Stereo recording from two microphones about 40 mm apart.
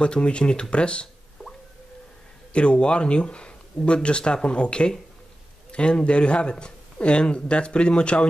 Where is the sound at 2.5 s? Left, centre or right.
Left.